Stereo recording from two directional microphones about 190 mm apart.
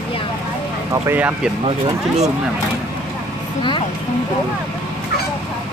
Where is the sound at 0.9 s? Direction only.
10° right (ahead or behind).